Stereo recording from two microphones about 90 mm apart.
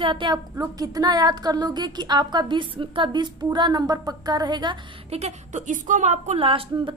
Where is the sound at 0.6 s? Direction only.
45° right (ahead or behind).